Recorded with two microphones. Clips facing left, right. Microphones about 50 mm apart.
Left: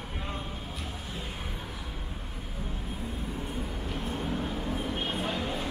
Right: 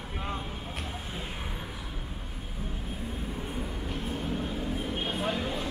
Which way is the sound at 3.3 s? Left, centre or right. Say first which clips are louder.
Even; centre.